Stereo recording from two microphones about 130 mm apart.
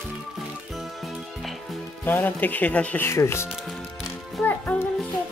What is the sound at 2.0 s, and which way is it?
Speech, 15° left (ahead or behind).